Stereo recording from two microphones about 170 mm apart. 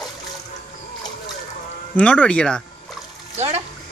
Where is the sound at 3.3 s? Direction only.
40° right (ahead or behind).